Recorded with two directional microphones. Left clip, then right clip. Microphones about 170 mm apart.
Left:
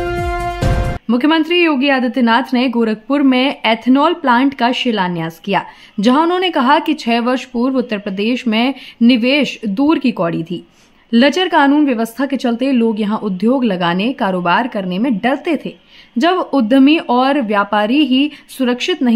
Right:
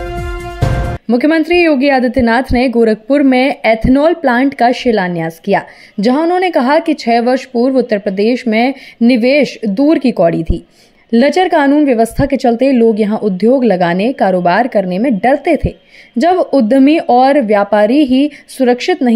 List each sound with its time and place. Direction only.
1.1 s a woman's voice: 15° right (ahead or behind)
6.4 s a woman's voice: 15° right (ahead or behind)